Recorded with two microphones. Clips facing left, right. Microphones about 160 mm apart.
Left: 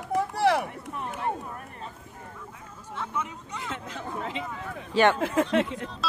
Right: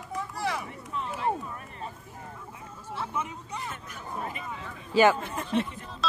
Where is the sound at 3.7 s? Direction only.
90° left.